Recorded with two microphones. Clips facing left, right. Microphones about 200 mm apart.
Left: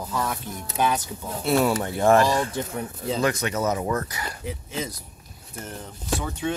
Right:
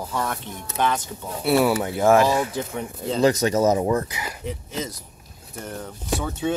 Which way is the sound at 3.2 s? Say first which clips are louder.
Right 7 dB; 40° right (ahead or behind).